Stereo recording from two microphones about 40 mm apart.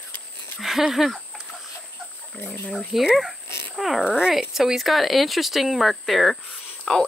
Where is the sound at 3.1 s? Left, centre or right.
Centre.